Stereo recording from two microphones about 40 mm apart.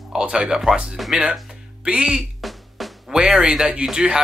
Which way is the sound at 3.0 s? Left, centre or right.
Centre.